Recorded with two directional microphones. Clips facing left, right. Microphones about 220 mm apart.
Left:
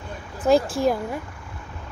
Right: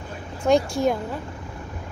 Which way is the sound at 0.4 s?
5° left (ahead or behind).